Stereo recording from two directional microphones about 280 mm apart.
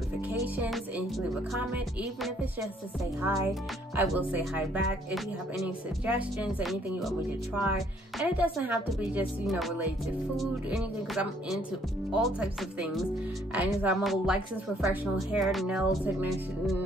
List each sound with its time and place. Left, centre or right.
0.3 s a woman's voice: centre
3.3 s speech: centre
6.0 s a woman's voice: centre